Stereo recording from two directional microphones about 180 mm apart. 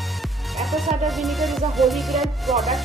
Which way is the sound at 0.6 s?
Centre (ahead or behind).